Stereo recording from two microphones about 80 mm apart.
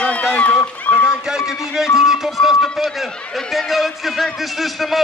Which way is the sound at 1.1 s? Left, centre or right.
Centre.